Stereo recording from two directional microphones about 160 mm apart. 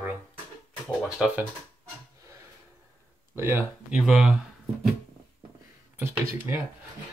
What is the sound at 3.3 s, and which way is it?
Speech, 15° right (ahead or behind).